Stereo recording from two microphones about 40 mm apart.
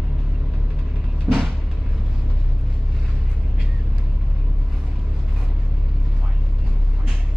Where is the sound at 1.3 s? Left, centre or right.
Centre.